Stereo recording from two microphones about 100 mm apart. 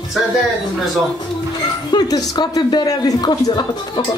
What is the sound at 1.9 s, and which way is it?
Speech, 40° left (ahead or behind).